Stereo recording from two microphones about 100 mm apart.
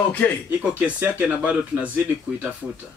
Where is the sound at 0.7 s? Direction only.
15° right (ahead or behind).